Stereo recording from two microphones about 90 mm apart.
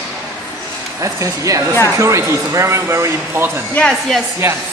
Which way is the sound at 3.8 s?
10° left (ahead or behind).